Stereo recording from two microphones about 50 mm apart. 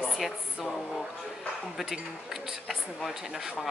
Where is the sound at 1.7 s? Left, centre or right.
Centre.